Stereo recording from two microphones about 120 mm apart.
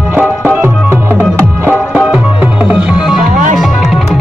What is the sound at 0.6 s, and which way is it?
Music, 20° right (ahead or behind).